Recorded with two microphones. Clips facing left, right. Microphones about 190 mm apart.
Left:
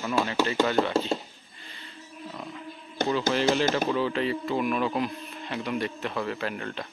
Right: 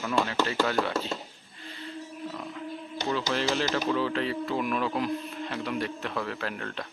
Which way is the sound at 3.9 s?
5° left (ahead or behind).